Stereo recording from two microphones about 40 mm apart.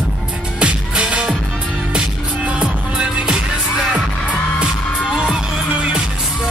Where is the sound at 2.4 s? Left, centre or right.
Right.